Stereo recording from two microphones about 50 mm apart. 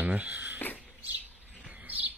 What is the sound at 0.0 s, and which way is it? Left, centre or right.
Speech, right.